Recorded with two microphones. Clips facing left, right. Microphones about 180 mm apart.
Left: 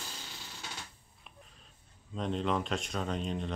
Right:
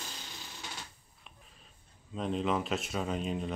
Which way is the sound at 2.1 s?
5° right (ahead or behind).